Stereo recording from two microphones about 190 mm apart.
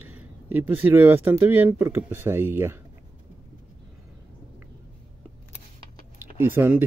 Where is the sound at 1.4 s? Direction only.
10° right (ahead or behind).